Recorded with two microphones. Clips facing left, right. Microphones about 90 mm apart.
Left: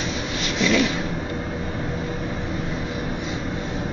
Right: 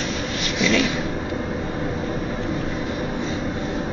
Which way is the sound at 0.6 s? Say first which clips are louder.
Even; 5° left (ahead or behind).